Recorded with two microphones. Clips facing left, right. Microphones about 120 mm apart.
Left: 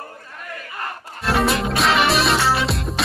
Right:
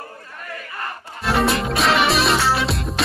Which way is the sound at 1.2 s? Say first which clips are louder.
Even; centre (ahead or behind).